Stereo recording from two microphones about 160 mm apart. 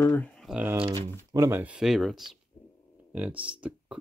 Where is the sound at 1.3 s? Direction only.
15° right (ahead or behind).